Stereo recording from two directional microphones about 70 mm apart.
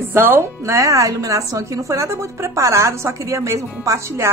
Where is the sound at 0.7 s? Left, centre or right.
Right.